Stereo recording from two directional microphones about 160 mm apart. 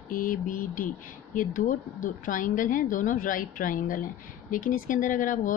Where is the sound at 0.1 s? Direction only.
55° left (ahead or behind).